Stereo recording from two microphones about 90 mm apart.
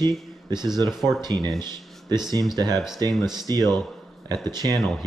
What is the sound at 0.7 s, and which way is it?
Speech, 50° right (ahead or behind).